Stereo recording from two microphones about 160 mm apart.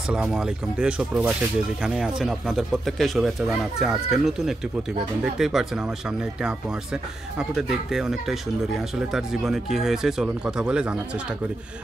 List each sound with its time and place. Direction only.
0.1 s speech: 5° right (ahead or behind)